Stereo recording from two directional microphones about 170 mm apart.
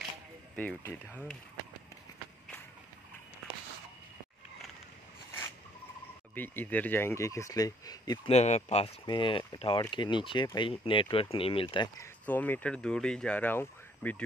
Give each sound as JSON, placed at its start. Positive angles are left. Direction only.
{"t": 0.6, "sound": "speech", "side_deg": 10}
{"t": 6.3, "sound": "speech", "side_deg": 10}
{"t": 8.3, "sound": "speech", "side_deg": 40}
{"t": 9.0, "sound": "speech", "side_deg": 30}
{"t": 12.0, "sound": "speech", "side_deg": 10}